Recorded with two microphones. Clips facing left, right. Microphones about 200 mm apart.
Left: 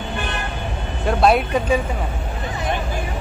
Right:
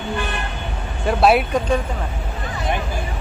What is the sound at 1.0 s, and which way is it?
Speech, centre (ahead or behind).